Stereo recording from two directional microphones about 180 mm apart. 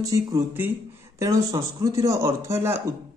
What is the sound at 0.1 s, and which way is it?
Speech, 15° right (ahead or behind).